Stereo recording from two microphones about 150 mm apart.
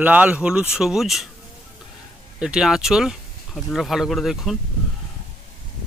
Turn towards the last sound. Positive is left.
turn(degrees=0)  # may be behind; listen again after turning